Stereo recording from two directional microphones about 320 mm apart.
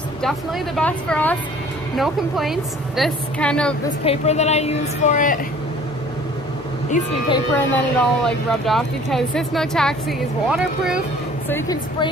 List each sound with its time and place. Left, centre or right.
0.7 s speech: centre
4.0 s a woman's voice: centre
7.5 s a woman's voice: centre